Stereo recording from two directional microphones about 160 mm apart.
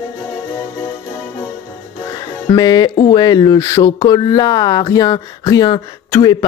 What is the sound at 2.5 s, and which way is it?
A man's voice, 25° left (ahead or behind).